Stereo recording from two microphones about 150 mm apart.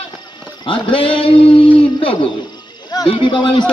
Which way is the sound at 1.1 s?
35° left (ahead or behind).